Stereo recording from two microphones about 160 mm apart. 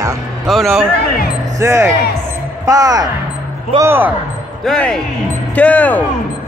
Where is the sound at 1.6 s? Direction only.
15° right (ahead or behind).